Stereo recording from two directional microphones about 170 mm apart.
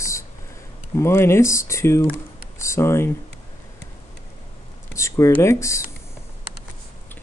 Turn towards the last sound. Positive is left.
turn(degrees=15)  # may be behind; listen again after turning